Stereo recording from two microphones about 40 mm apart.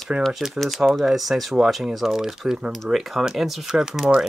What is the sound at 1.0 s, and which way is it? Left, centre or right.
Speech, centre.